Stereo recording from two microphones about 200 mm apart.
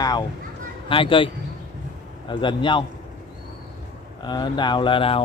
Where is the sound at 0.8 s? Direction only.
25° left (ahead or behind).